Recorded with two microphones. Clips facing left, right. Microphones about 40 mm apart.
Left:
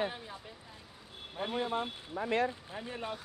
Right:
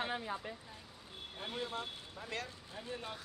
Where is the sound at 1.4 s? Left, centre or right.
Left.